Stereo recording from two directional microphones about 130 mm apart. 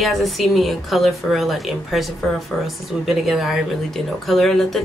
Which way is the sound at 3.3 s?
Centre (ahead or behind).